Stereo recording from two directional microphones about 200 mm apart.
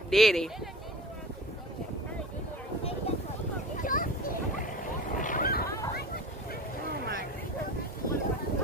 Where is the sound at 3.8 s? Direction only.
45° left (ahead or behind).